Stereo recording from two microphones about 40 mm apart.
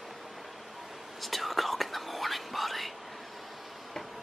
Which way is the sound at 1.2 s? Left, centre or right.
Centre.